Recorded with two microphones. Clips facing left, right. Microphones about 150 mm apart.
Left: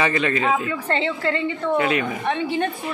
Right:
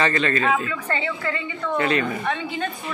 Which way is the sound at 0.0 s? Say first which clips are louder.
Even; 10° left (ahead or behind).